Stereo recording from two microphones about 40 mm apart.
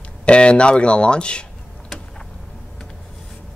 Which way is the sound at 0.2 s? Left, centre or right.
Left.